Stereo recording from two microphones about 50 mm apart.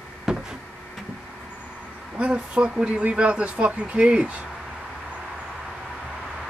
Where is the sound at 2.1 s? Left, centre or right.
Right.